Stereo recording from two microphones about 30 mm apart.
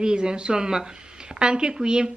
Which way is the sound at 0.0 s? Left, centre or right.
Right.